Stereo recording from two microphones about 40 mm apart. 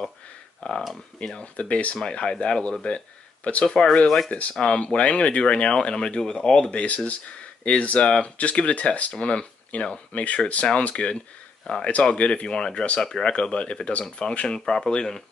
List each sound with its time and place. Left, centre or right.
0.6 s speech: left
2.0 s speech: left
4.3 s speech: left; by 6.7 s centre
6.7 s speech: left
9.1 s speech: left
13.0 s speech: centre
13.3 s speech: left
14.6 s speech: centre